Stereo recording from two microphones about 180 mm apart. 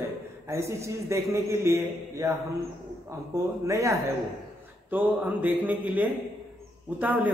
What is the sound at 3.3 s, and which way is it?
A man's voice, 15° right (ahead or behind).